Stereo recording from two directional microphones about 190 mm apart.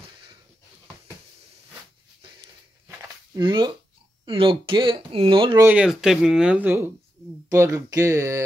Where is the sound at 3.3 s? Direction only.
25° right (ahead or behind).